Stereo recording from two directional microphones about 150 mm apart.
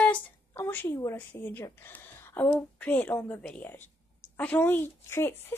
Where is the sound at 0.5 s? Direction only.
15° left (ahead or behind).